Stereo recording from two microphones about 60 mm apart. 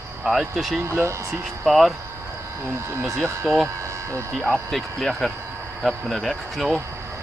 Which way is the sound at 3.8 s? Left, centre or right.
Right.